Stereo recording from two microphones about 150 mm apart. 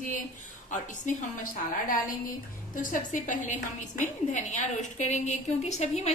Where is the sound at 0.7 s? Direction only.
60° left (ahead or behind).